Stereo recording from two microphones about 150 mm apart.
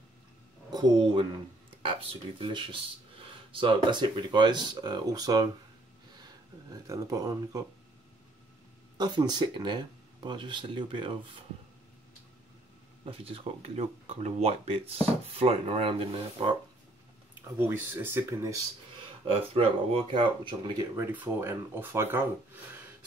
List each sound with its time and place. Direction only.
0.7 s speech: 30° right (ahead or behind)
6.7 s speech: 25° right (ahead or behind)
8.9 s speech: 30° right (ahead or behind)
13.0 s speech: 40° right (ahead or behind)
17.6 s speech: 15° right (ahead or behind)
19.5 s speech: 40° right (ahead or behind); by 22.3 s 15° right (ahead or behind)